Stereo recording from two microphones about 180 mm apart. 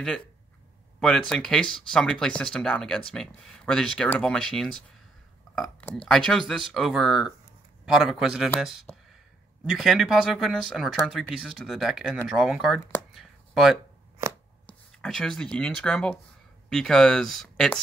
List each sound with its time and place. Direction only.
0.9 s speech: 5° left (ahead or behind)
13.1 s a sound: centre (ahead or behind)
14.7 s speech: 5° left (ahead or behind)